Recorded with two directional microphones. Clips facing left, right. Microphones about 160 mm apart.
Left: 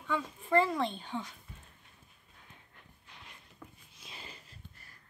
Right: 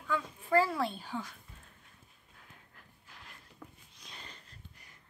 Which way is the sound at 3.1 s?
Centre (ahead or behind).